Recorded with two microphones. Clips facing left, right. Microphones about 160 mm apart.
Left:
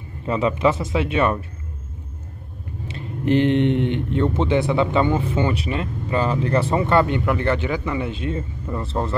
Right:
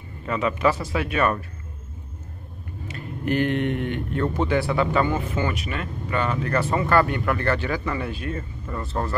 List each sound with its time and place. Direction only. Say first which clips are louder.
0.2 s speech: left 3 dB; 25° left (ahead or behind)
2.9 s speech: left 5 dB; 25° left (ahead or behind)